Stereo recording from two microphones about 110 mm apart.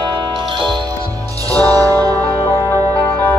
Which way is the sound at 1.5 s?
35° right (ahead or behind).